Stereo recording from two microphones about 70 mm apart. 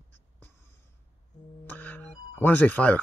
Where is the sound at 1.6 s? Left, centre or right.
Left.